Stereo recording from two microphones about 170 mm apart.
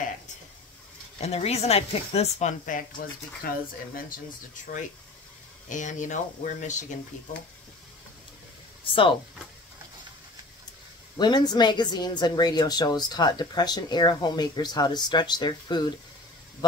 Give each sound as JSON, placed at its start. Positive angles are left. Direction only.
{"t": 1.1, "sound": "speech", "side_deg": 40}
{"t": 5.7, "sound": "speech", "side_deg": 45}
{"t": 8.8, "sound": "speech", "side_deg": 30}
{"t": 11.1, "sound": "a woman's voice", "side_deg": 25}